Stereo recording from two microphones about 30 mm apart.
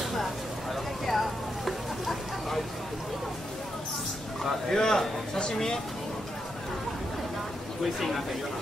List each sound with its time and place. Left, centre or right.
1.0 s vehicle: centre
4.6 s a man's voice: centre
7.8 s speech: centre